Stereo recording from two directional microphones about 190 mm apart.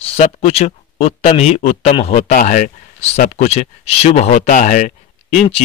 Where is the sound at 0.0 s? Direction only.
35° left (ahead or behind).